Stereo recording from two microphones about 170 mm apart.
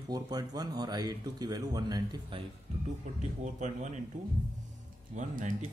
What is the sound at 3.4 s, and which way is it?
Speech, 45° right (ahead or behind).